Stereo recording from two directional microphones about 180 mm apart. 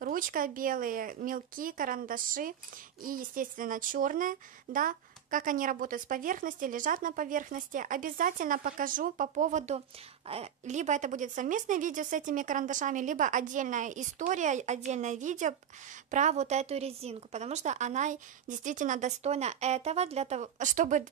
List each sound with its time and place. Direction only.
0.0 s speech: 50° right (ahead or behind)